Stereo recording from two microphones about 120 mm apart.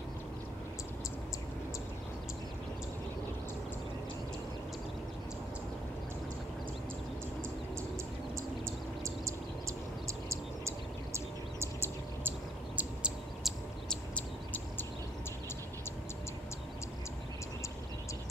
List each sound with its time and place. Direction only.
9.0 s a sound: 25° right (ahead or behind)
11.1 s bird: 20° right (ahead or behind)
13.4 s bird: centre (ahead or behind)